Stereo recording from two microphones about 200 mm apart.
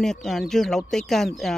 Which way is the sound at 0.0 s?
Centre (ahead or behind).